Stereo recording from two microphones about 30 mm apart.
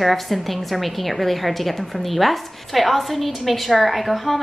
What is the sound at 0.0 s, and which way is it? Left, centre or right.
A woman's voice, centre.